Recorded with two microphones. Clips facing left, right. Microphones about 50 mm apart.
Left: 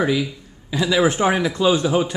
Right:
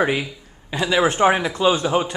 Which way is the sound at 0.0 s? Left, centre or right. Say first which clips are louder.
Even; right.